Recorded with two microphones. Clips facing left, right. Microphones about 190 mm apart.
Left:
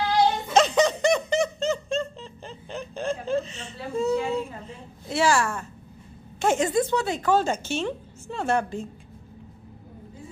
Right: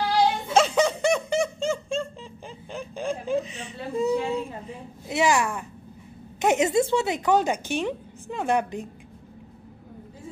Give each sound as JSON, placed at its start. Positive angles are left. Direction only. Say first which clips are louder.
{"t": 0.5, "sound": "snicker", "louder": "left 1 dB", "side_deg": -10}
{"t": 6.4, "sound": "a woman's voice", "louder": "right 1 dB", "side_deg": -20}